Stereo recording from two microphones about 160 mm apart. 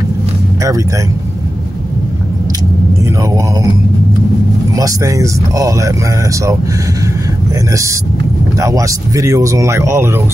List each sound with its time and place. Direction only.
4.7 s speech: 20° right (ahead or behind)
8.5 s speech: 20° right (ahead or behind)